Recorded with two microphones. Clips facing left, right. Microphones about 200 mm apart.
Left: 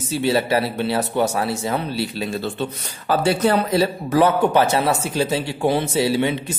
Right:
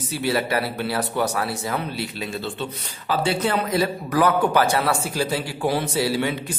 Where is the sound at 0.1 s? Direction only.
25° left (ahead or behind); by 3.5 s 45° left (ahead or behind).